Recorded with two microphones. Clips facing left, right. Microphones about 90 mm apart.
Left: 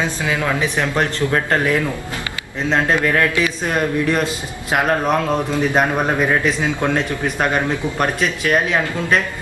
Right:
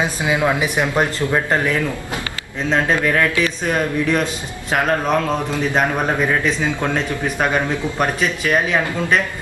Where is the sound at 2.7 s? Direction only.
5° left (ahead or behind).